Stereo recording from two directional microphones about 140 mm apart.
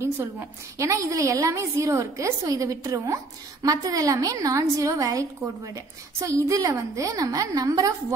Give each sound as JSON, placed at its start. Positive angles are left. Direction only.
{"t": 0.7, "sound": "a woman's voice", "side_deg": -20}